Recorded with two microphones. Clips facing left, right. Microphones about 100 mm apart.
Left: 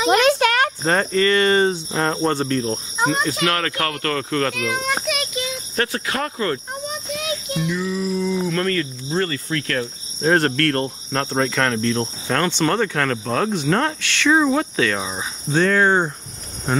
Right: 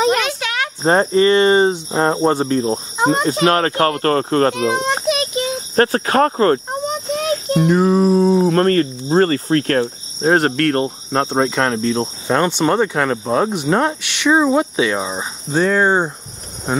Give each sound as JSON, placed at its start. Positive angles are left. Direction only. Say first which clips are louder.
{"t": 0.1, "sound": "a sound", "louder": "left 4 dB", "side_deg": 45}
{"t": 0.8, "sound": "speech", "louder": "right 8 dB", "side_deg": -25}
{"t": 10.2, "sound": "cricket", "louder": "right 3 dB", "side_deg": -20}